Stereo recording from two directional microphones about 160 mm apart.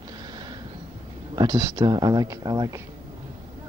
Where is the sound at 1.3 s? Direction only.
30° right (ahead or behind).